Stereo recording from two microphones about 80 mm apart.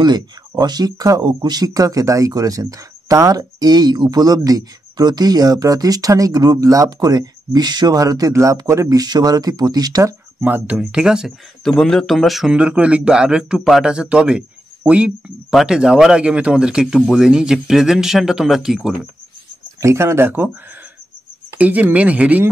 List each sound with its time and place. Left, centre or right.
0.0 s speech: right
9.0 s speech: right
10.4 s speech: right
10.9 s speech: centre
11.6 s speech: centre
12.5 s speech: centre
19.8 s speech: right
21.5 s speech: centre